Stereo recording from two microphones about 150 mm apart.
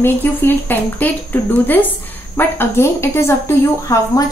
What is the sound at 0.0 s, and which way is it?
A woman's voice, 15° left (ahead or behind).